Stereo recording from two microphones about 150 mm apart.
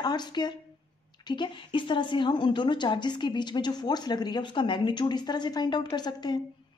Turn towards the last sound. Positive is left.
turn(degrees=30)  # may be behind; listen again after turning